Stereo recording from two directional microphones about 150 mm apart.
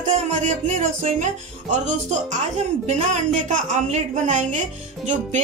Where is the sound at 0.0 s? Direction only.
50° right (ahead or behind).